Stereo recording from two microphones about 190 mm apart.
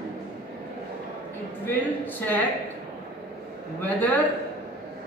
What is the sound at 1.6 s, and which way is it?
Speech, 10° left (ahead or behind).